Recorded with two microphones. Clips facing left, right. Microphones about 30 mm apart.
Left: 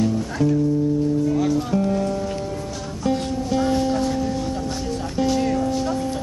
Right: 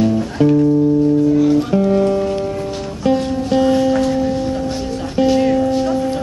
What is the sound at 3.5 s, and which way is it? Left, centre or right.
Music, right.